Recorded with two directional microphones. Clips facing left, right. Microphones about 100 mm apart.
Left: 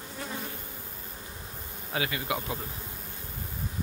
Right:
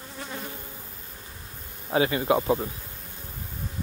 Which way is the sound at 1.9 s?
30° right (ahead or behind).